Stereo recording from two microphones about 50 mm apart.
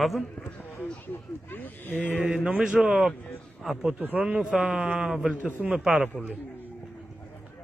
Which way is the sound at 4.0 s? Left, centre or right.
Right.